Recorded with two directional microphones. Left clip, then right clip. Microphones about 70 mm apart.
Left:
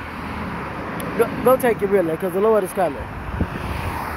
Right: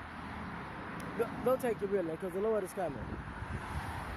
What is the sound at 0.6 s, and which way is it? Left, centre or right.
Vehicle, right.